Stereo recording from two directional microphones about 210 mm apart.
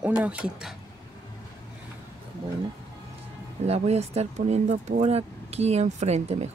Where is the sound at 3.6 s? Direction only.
30° right (ahead or behind).